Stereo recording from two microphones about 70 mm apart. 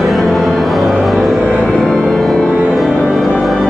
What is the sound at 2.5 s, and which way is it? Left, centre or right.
Music, right.